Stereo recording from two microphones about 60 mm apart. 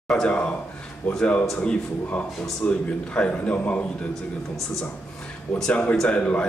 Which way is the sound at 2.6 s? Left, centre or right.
Centre.